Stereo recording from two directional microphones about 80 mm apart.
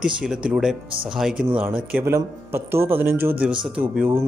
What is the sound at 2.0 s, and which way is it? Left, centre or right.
Speech, right.